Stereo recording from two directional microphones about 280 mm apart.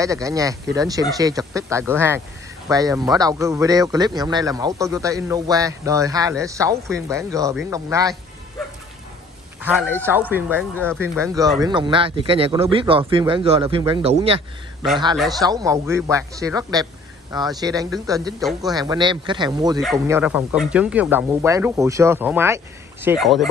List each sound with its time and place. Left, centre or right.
0.0 s a man's voice: centre
9.9 s a man's voice: centre
19.8 s a man's voice: centre